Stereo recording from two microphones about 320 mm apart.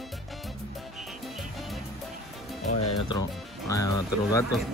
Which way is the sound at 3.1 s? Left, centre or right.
Centre.